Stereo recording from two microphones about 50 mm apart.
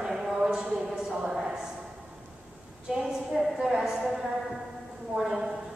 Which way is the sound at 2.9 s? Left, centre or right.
Centre.